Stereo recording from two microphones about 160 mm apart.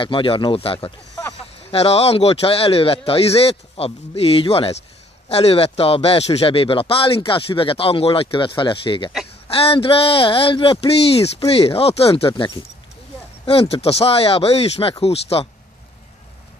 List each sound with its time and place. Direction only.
0.0 s a man's voice: 35° left (ahead or behind)
1.4 s a man's voice: 35° left (ahead or behind)
13.5 s a man's voice: 35° left (ahead or behind)